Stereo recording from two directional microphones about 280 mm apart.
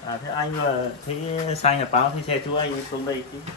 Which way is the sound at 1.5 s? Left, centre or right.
Left.